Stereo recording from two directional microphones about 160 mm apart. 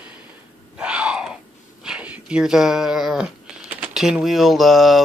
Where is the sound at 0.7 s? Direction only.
5° right (ahead or behind).